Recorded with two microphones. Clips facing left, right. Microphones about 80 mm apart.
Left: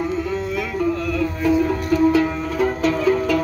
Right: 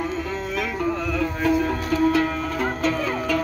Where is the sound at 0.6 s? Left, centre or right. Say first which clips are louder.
Left 1 dB; centre.